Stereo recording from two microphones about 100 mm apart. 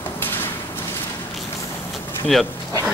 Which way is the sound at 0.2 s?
20° left (ahead or behind).